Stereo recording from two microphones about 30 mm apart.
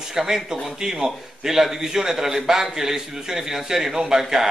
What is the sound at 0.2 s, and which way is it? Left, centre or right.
A man's voice, centre.